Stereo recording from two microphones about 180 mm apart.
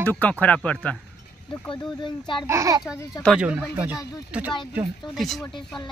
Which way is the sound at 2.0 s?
25° left (ahead or behind).